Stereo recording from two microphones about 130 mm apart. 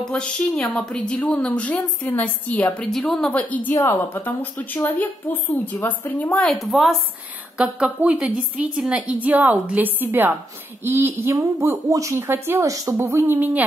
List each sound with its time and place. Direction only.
0.0 s a woman's voice: 5° left (ahead or behind)
6.5 s a woman's voice: centre (ahead or behind)